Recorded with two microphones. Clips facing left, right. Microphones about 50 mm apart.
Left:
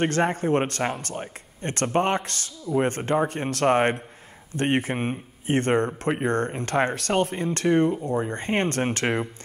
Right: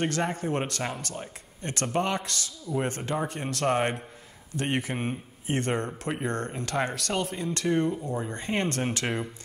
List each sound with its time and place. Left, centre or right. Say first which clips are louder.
0.0 s speech: left 5 dB; left